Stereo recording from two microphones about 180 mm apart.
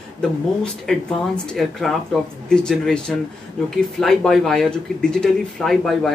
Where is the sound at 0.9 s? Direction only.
5° left (ahead or behind).